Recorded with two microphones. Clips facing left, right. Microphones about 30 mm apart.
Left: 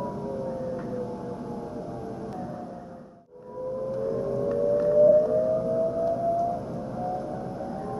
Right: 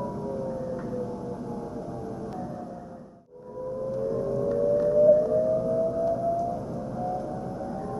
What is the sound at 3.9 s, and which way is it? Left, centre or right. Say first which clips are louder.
Music: right 1 dB; centre.